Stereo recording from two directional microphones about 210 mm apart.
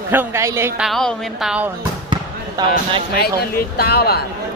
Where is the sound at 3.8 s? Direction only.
50° left (ahead or behind).